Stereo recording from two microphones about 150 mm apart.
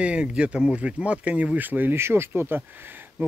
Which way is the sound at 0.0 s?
10° right (ahead or behind).